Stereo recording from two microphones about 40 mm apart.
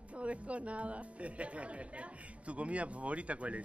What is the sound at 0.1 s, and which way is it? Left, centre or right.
Speech, right.